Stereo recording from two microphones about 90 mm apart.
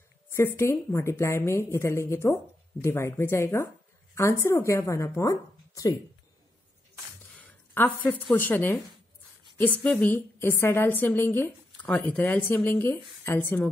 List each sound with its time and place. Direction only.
0.4 s a woman's voice: 30° left (ahead or behind)
7.4 s a woman's voice: 20° left (ahead or behind)